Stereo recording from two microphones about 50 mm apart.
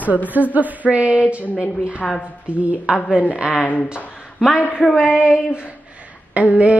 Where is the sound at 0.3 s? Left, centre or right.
Right.